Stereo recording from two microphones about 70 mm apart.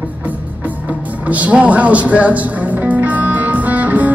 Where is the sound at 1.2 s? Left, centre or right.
Right.